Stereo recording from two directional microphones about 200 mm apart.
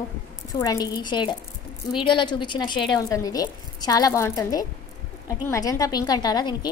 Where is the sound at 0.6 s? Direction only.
20° left (ahead or behind).